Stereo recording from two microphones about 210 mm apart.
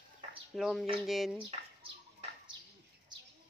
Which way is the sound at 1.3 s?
25° right (ahead or behind).